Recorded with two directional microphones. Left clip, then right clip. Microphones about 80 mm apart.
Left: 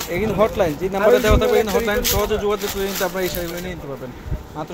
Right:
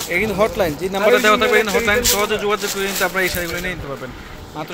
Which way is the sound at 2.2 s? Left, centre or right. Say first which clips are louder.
Right 2 dB; left.